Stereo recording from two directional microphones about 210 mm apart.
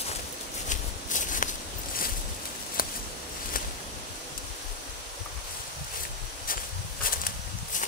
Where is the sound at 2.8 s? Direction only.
40° left (ahead or behind).